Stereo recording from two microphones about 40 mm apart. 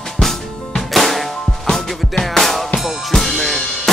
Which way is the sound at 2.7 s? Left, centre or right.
Centre.